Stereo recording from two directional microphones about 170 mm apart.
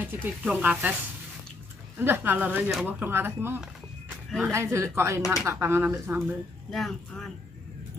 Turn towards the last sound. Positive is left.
turn(degrees=0)  # may be behind; listen again after turning